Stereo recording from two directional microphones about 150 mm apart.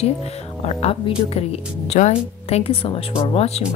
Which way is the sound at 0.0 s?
45° left (ahead or behind).